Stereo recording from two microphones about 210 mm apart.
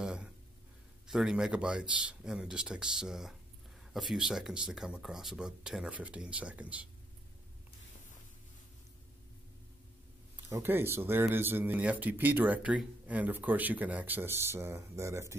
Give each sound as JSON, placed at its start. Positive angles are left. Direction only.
{"t": 0.0, "sound": "a sound", "side_deg": -5}
{"t": 1.0, "sound": "speech", "side_deg": -5}
{"t": 10.3, "sound": "speech", "side_deg": -10}